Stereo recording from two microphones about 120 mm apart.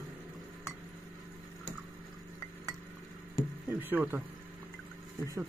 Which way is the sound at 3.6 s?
15° right (ahead or behind).